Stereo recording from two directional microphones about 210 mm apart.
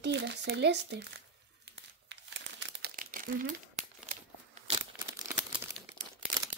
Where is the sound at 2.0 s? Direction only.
55° right (ahead or behind); by 3.2 s 40° right (ahead or behind).